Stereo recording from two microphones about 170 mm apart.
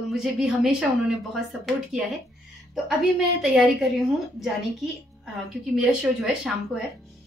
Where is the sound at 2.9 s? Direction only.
5° right (ahead or behind).